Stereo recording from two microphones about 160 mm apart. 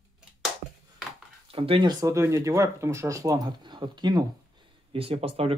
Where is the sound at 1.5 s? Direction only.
35° right (ahead or behind).